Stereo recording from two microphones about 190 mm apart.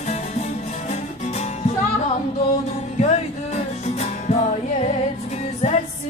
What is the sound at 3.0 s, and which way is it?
Music, 35° left (ahead or behind).